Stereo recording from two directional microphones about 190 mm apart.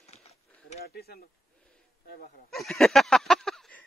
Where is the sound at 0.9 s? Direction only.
55° left (ahead or behind).